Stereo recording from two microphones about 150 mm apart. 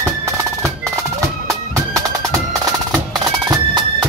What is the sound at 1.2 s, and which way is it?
Music, 20° right (ahead or behind).